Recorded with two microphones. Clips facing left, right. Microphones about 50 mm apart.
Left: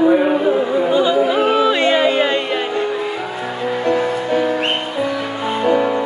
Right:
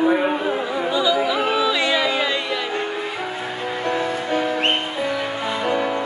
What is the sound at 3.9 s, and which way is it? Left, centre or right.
Music, left.